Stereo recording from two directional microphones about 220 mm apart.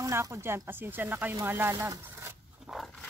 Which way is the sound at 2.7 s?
Centre (ahead or behind).